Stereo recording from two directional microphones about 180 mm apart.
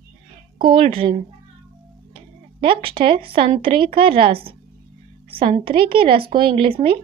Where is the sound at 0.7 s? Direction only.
30° right (ahead or behind).